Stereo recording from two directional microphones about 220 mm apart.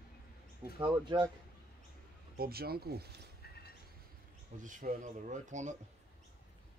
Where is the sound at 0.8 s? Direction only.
20° right (ahead or behind).